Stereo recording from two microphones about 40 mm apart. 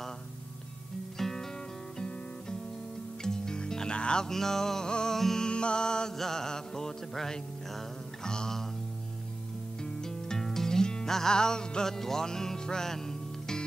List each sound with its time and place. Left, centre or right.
1.1 s music: centre
3.2 s music: centre
4.3 s music: centre
5.5 s music: left
10.0 s music: centre